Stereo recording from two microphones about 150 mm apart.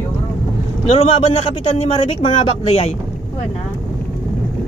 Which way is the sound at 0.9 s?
45° left (ahead or behind).